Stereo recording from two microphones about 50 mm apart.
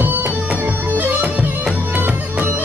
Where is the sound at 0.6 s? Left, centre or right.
Right.